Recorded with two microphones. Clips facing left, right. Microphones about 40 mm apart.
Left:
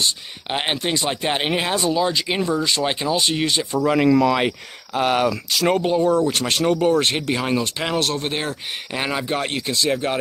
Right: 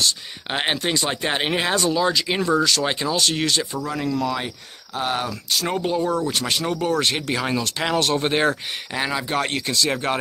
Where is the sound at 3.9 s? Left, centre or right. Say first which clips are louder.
Left 10 dB; left.